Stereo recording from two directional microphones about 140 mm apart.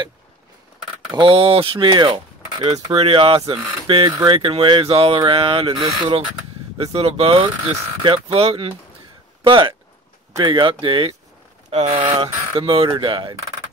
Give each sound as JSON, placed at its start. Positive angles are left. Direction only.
{"t": 1.1, "sound": "speech", "side_deg": -40}
{"t": 6.8, "sound": "speech", "side_deg": -45}